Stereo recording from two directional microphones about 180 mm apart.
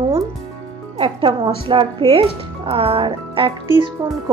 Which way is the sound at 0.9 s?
25° right (ahead or behind).